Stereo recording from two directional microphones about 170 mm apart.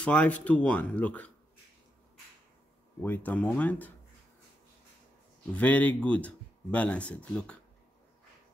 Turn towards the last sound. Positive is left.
turn(degrees=5)  # may be behind; listen again after turning